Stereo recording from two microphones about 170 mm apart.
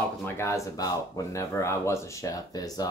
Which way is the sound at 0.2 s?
15° left (ahead or behind).